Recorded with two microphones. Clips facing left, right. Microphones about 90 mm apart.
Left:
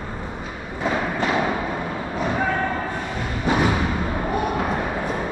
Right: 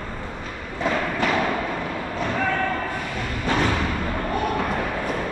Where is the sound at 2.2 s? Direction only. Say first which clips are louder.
Left 2 dB; 15° left (ahead or behind).